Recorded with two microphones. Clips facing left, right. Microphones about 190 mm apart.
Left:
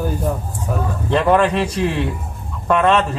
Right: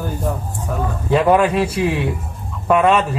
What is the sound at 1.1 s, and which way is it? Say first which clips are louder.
Speech: right 1 dB; 10° right (ahead or behind).